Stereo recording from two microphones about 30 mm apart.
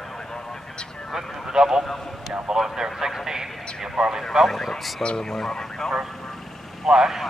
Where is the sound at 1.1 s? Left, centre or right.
Centre.